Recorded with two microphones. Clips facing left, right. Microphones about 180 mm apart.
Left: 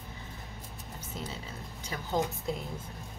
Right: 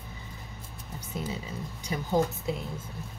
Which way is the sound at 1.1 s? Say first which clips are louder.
Right 6 dB; 10° right (ahead or behind).